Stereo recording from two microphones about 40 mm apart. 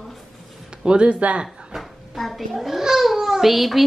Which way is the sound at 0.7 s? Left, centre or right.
Right.